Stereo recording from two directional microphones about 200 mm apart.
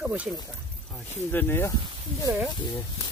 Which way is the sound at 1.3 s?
10° left (ahead or behind).